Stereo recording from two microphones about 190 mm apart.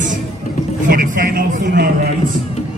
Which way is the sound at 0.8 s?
45° right (ahead or behind).